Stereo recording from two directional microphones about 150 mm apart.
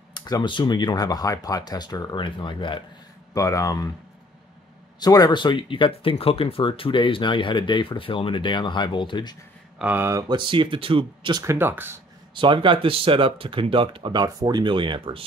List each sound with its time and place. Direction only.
0.1 s speech: 30° left (ahead or behind)
3.3 s speech: 20° left (ahead or behind)
5.0 s speech: 25° left (ahead or behind)
9.8 s speech: 10° right (ahead or behind); by 11.4 s 35° right (ahead or behind)
11.4 s speech: 15° right (ahead or behind)
12.4 s speech: 35° right (ahead or behind)